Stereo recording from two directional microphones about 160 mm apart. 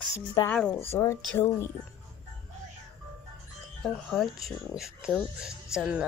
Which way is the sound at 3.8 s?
Centre (ahead or behind).